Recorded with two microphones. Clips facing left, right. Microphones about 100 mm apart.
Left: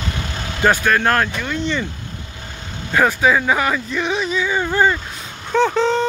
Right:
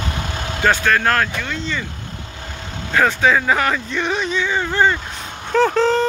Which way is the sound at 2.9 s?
15° left (ahead or behind).